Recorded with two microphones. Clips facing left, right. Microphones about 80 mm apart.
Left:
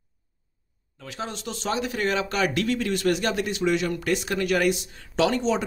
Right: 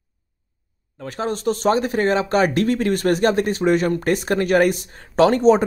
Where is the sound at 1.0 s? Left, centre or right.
Right.